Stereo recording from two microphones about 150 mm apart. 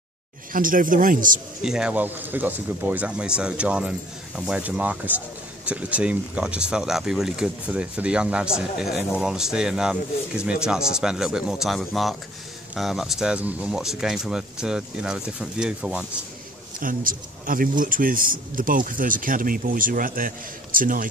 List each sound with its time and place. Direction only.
0.5 s speech: 65° right (ahead or behind)
1.6 s speech: 5° right (ahead or behind)
16.8 s speech: 65° right (ahead or behind)